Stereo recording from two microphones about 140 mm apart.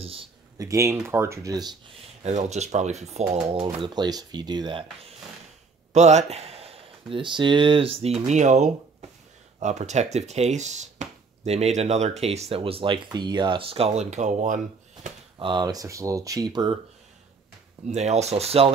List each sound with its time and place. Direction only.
0.0 s speech: 40° right (ahead or behind)
0.6 s speech: 25° right (ahead or behind)
2.2 s speech: 55° right (ahead or behind)
3.8 s speech: 30° right (ahead or behind)
5.9 s speech: 55° right (ahead or behind)
15.3 s speech: 35° right (ahead or behind)
17.8 s speech: 55° right (ahead or behind)